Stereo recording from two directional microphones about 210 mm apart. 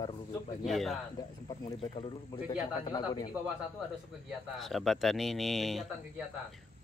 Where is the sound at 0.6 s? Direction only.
Centre (ahead or behind).